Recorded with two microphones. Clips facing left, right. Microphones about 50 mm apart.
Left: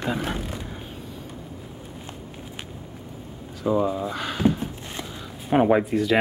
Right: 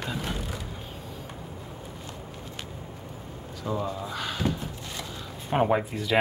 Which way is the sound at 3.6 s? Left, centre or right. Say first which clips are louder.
Left 8 dB; centre.